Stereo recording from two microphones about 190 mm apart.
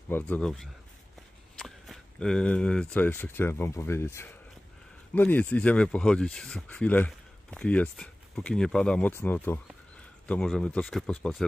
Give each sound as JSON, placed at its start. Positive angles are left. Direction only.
{"t": 0.1, "sound": "speech", "side_deg": 5}